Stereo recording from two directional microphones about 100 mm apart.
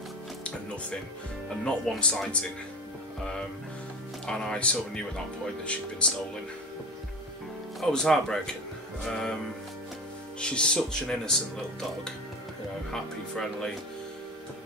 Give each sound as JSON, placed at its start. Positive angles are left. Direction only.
{"t": 1.6, "sound": "speech", "side_deg": 10}
{"t": 4.3, "sound": "speech", "side_deg": 10}
{"t": 7.8, "sound": "speech", "side_deg": 5}
{"t": 10.4, "sound": "speech", "side_deg": 10}
{"t": 12.9, "sound": "speech", "side_deg": 5}